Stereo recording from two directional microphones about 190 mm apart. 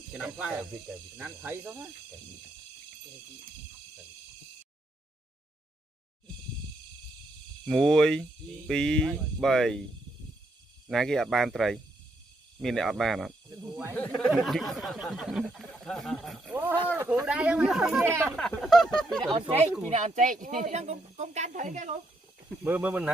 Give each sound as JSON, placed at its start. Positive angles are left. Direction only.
{"t": 0.1, "sound": "speech", "side_deg": -5}
{"t": 7.6, "sound": "speech", "side_deg": 0}
{"t": 10.9, "sound": "speech", "side_deg": 0}
{"t": 13.9, "sound": "speech", "side_deg": 5}
{"t": 18.0, "sound": "speech", "side_deg": -15}
{"t": 18.3, "sound": "speech", "side_deg": 5}
{"t": 19.9, "sound": "speech", "side_deg": -40}
{"t": 22.6, "sound": "speech", "side_deg": -10}